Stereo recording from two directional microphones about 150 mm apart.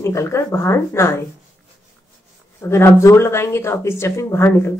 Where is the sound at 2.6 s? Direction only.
15° left (ahead or behind).